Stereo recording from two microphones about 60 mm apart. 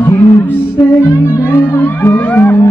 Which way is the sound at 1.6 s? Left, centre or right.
Left.